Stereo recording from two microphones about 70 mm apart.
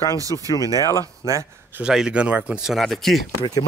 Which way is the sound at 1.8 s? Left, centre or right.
Centre.